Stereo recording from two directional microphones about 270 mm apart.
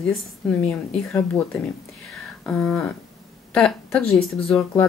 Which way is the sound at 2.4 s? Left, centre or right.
Centre.